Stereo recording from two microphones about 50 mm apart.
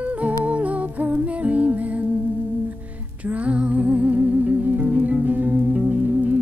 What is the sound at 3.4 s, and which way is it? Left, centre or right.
Music, right.